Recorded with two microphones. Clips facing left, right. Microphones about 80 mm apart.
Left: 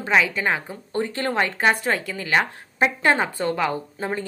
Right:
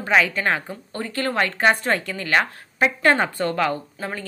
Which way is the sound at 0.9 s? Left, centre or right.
Left.